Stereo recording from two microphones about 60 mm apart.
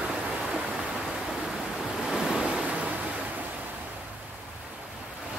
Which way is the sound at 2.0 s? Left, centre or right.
Centre.